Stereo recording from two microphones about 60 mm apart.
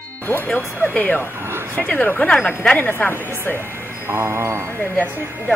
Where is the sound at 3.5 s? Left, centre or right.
Right.